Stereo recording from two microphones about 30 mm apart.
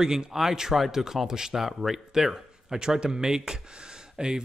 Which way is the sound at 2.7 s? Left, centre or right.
Right.